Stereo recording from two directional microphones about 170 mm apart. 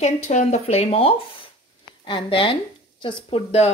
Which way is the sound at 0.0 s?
45° left (ahead or behind).